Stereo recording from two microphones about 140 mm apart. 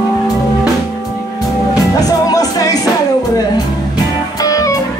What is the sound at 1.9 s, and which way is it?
Music, 25° left (ahead or behind).